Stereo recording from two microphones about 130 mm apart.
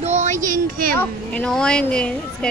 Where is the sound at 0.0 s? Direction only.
60° right (ahead or behind); by 0.6 s 80° right.